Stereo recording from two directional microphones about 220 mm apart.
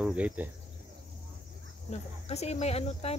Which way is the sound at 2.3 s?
30° left (ahead or behind).